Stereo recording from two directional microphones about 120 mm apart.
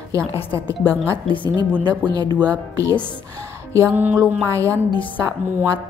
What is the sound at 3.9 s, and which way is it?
Speech, 15° right (ahead or behind).